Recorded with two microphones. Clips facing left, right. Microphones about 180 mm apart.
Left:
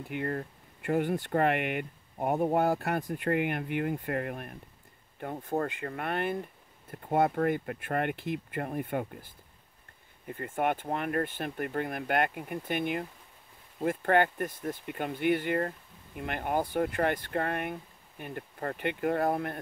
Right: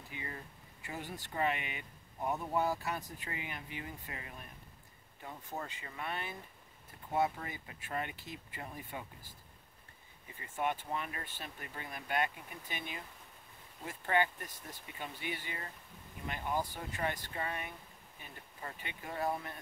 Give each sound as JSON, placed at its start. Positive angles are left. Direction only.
{"t": 0.1, "sound": "speech", "side_deg": 60}